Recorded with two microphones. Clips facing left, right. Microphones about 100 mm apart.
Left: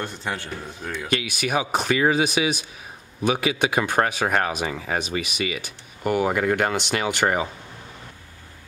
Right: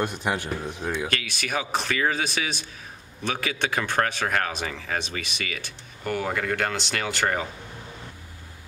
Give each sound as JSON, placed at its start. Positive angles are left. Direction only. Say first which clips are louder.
{"t": 0.0, "sound": "speech", "louder": "right 3 dB", "side_deg": -15}
{"t": 1.0, "sound": "speech", "louder": "left 4 dB", "side_deg": 15}